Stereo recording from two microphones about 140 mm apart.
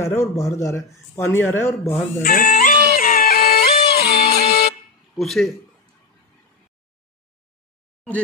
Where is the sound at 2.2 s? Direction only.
75° left (ahead or behind).